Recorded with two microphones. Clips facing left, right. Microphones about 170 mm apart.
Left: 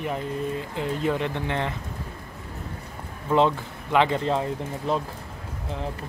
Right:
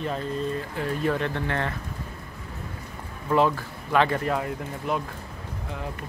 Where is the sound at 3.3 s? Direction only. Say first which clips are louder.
Left 1 dB; 20° left (ahead or behind).